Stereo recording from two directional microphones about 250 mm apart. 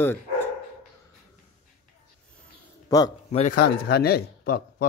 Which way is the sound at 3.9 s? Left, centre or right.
Left.